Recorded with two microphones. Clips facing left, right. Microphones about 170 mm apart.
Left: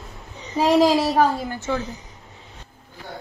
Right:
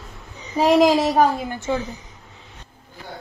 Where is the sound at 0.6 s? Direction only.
10° right (ahead or behind).